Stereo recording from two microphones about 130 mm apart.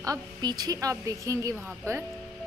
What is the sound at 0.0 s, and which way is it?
A woman's voice, 30° right (ahead or behind).